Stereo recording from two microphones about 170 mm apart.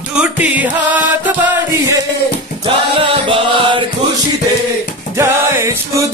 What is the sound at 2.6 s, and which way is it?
Music, 30° right (ahead or behind).